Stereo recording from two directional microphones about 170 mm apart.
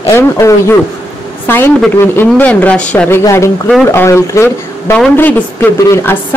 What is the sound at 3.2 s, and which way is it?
A woman's voice, 20° left (ahead or behind).